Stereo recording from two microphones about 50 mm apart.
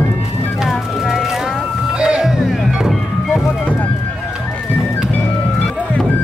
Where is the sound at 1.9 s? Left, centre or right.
Right.